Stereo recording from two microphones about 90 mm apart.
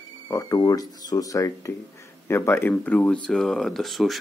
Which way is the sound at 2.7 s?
15° left (ahead or behind).